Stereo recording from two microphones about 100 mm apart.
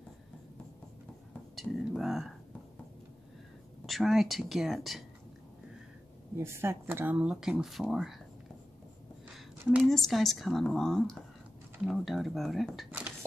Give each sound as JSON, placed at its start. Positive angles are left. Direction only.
{"t": 1.5, "sound": "speech", "side_deg": 0}
{"t": 3.8, "sound": "speech", "side_deg": 0}
{"t": 6.3, "sound": "speech", "side_deg": -25}
{"t": 7.2, "sound": "speech", "side_deg": -5}
{"t": 9.8, "sound": "speech", "side_deg": 5}